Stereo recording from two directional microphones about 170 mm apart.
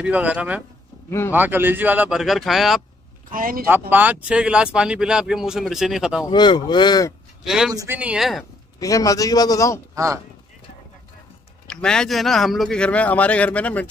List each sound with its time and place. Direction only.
0.0 s speech: 10° right (ahead or behind)
3.3 s a man's voice: 55° right (ahead or behind)
3.9 s a man's voice: 10° right (ahead or behind)
6.2 s a man's voice: 25° left (ahead or behind)
7.4 s a man's voice: 5° right (ahead or behind)
7.7 s speech: 20° right (ahead or behind)
8.0 s a man's voice: 5° right (ahead or behind)
8.7 s a man's voice: 20° left (ahead or behind)
9.9 s speech: 20° right (ahead or behind)
11.6 s a man's voice: 5° left (ahead or behind)